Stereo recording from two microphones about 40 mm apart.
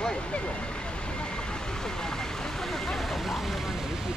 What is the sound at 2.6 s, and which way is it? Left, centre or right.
Vehicle, centre.